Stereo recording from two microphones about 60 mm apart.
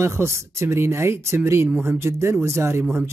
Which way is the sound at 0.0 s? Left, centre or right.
Right.